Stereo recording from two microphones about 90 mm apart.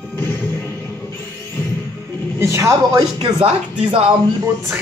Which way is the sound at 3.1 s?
75° right (ahead or behind).